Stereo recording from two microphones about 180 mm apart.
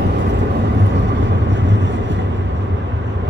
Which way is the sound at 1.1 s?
80° right.